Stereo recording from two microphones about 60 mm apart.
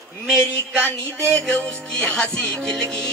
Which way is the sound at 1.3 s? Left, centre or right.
Left.